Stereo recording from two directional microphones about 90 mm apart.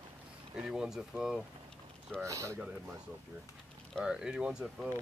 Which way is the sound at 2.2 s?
35° right (ahead or behind).